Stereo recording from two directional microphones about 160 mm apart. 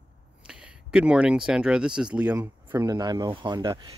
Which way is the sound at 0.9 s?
5° right (ahead or behind).